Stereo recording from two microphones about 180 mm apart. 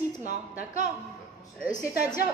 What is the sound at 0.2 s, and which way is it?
Speech, 40° right (ahead or behind).